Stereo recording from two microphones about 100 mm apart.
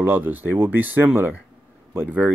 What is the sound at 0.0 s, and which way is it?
Speech, 20° right (ahead or behind).